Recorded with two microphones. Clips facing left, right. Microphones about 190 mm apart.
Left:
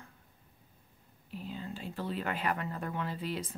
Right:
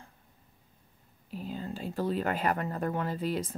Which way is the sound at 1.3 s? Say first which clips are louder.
Right 4 dB; 40° right (ahead or behind).